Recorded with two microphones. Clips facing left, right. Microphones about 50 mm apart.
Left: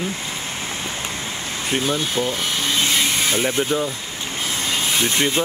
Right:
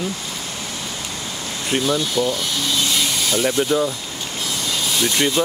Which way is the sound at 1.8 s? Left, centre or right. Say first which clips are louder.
Right 3 dB; left.